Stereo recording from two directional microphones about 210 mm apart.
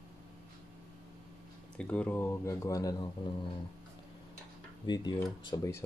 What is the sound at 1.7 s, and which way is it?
Speech, 5° left (ahead or behind).